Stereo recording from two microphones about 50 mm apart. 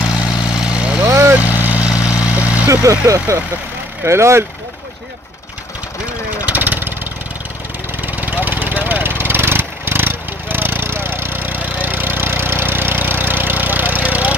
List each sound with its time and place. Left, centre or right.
0.7 s vehicle: right
1.0 s vehicle: right
1.3 s vehicle: right
1.9 s vehicle: right
2.7 s speech: right
4.0 s speech: right
6.4 s vehicle: right
8.0 s vehicle: right